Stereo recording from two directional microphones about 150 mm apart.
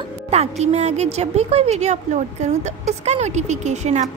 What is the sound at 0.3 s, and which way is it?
A woman's voice, 45° right (ahead or behind).